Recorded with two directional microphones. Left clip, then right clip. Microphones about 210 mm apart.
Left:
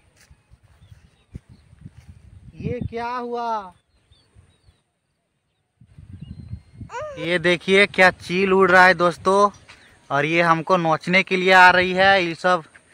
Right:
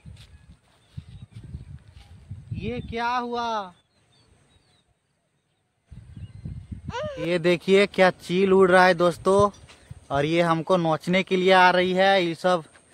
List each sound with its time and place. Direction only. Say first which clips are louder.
2.9 s speech: right 2 dB; 60° right (ahead or behind)
6.9 s speech: left 3 dB; 5° left (ahead or behind)
9.7 s a sound: left 5 dB; 20° left (ahead or behind)
10.0 s speech: left 4 dB; centre (ahead or behind)